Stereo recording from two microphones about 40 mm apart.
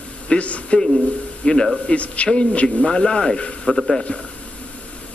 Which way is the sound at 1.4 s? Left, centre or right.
Centre.